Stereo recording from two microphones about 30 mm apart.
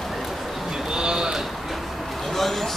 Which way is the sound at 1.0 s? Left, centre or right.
Right.